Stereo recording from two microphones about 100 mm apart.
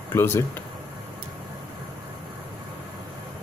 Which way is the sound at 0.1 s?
25° left (ahead or behind).